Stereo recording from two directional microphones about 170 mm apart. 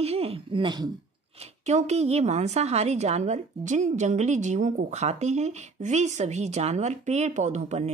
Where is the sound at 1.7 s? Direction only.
40° right (ahead or behind).